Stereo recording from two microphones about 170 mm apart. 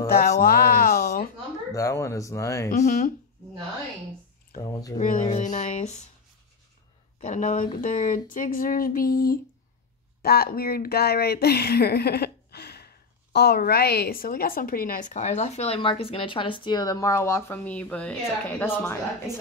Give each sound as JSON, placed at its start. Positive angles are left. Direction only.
{"t": 0.4, "sound": "a sound", "side_deg": 60}
{"t": 1.7, "sound": "speech", "side_deg": 20}
{"t": 4.6, "sound": "speech", "side_deg": 25}
{"t": 4.9, "sound": "speech", "side_deg": 45}
{"t": 7.2, "sound": "speech", "side_deg": 45}